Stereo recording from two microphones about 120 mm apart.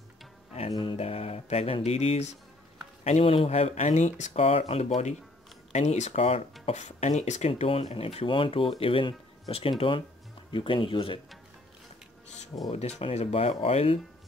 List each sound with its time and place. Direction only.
0.7 s music: 50° left (ahead or behind)
3.0 s speech: 65° left (ahead or behind); by 4.4 s 85° left
4.4 s music: 55° left (ahead or behind)
6.6 s speech: 70° left (ahead or behind); by 11.1 s 45° left (ahead or behind)
12.5 s speech: 40° left (ahead or behind)
13.0 s music: 60° left (ahead or behind)